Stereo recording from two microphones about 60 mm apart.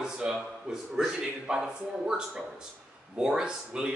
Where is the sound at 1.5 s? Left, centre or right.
Centre.